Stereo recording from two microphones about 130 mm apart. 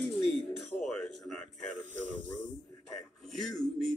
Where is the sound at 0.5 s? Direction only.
5° left (ahead or behind).